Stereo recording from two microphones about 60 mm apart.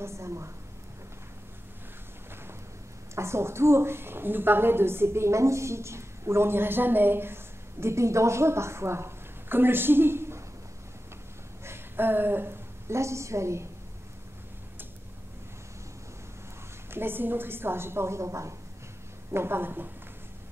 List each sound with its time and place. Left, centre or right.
0.0 s a woman's voice: right
3.2 s a woman's voice: right
7.8 s a woman's voice: right
11.6 s a woman's voice: right
16.9 s a woman's voice: right
19.3 s a woman's voice: right